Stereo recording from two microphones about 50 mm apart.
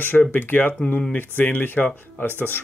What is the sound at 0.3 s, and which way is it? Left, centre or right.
Speech, left.